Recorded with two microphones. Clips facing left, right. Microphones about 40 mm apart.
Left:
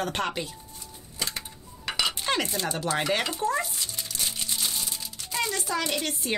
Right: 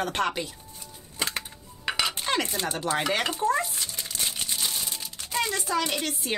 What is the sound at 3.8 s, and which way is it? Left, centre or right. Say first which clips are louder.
Crumpling: right 1 dB; right.